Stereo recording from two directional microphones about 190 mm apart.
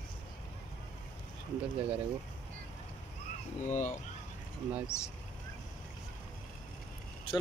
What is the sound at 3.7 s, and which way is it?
Speech, 40° left (ahead or behind).